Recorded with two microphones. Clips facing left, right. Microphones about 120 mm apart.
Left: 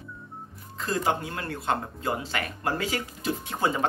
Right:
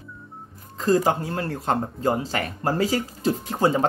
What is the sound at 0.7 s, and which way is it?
Speech, 40° right (ahead or behind).